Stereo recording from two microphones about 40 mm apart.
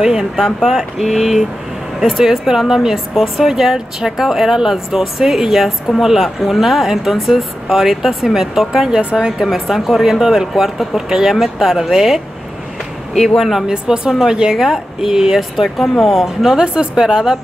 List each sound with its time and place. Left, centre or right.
0.0 s speech: centre
0.4 s speech: centre
9.5 s speech: centre
13.4 s speech: centre
13.7 s speech: centre
15.8 s speech: centre
16.4 s speech: right